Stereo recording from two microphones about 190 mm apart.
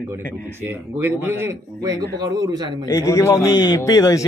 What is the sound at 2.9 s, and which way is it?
A man's voice, 15° left (ahead or behind).